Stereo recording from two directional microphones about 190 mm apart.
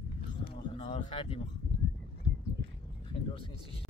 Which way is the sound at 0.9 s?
35° left (ahead or behind).